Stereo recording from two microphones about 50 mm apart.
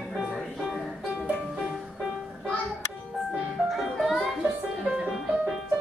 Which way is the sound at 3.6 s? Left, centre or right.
Centre.